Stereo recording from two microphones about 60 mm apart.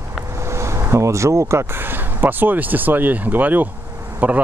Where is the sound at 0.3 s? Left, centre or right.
Right.